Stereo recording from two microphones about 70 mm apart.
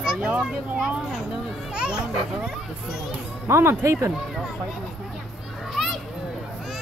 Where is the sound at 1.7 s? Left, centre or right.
Centre.